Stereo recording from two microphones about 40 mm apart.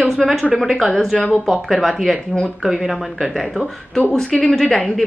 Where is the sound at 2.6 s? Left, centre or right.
Centre.